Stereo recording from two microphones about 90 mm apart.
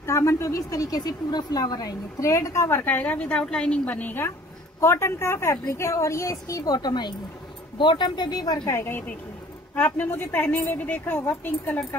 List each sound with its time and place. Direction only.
0.0 s speech: 35° left (ahead or behind)
6.6 s speech: 50° left (ahead or behind)
8.7 s a woman's voice: 25° left (ahead or behind)